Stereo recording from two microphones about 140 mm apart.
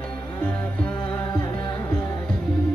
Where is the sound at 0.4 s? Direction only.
10° left (ahead or behind).